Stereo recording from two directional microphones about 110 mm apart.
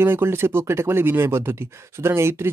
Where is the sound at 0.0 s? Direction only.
20° right (ahead or behind).